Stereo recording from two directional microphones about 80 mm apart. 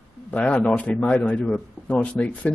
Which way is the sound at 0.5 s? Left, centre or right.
Centre.